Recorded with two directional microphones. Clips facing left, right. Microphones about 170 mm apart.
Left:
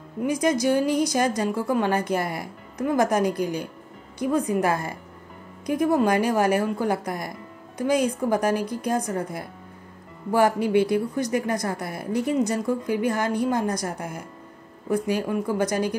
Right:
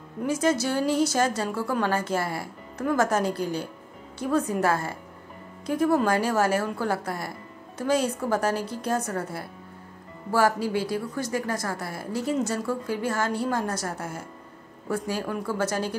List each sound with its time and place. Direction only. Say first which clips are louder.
0.2 s speech: left 2 dB; 15° left (ahead or behind)